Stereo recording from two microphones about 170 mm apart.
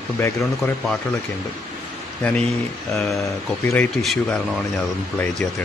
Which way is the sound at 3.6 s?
15° left (ahead or behind).